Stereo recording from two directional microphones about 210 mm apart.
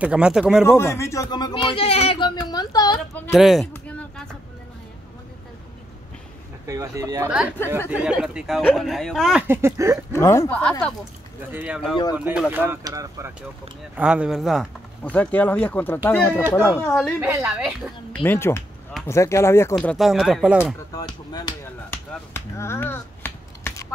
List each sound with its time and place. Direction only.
0.0 s speech: 5° right (ahead or behind)
0.7 s speech: 10° left (ahead or behind)
3.2 s speech: centre (ahead or behind)
6.7 s speech: 15° right (ahead or behind)
7.9 s speech: 5° right (ahead or behind)
10.1 s speech: 15° left (ahead or behind)
11.5 s speech: 5° right (ahead or behind)
13.9 s speech: 5° right (ahead or behind)
17.2 s speech: 10° right (ahead or behind)
18.2 s speech: 10° left (ahead or behind); by 20.7 s 5° right (ahead or behind)
20.9 s speech: 20° left (ahead or behind)